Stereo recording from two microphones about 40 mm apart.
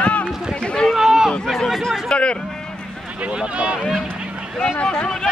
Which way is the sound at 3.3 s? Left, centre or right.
Right.